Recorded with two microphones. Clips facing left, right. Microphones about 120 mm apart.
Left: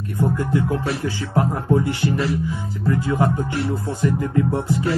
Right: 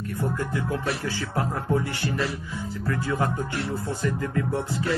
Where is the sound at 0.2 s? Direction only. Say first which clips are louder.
Left 8 dB; 20° left (ahead or behind).